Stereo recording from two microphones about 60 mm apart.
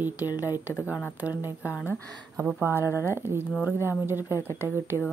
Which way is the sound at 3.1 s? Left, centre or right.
Right.